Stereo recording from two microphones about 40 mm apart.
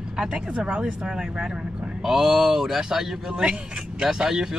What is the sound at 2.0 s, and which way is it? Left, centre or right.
Speech, centre.